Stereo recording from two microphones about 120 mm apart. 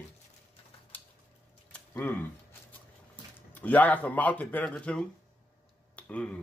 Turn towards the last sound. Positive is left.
turn(degrees=10)  # may be behind; listen again after turning